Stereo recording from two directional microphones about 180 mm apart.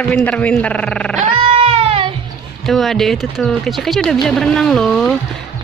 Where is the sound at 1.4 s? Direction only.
30° right (ahead or behind).